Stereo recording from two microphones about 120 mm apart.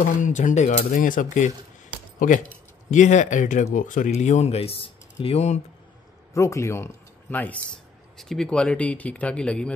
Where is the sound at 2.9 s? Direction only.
90° left; by 5.6 s 65° left (ahead or behind).